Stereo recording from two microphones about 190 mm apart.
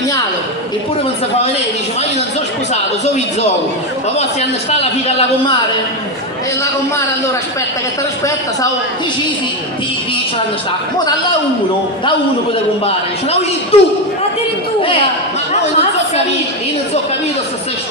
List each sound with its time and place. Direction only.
12.8 s a man's voice: 30° left (ahead or behind)